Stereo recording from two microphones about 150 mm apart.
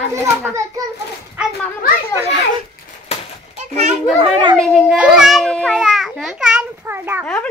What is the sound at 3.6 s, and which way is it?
Children playing, 50° right (ahead or behind).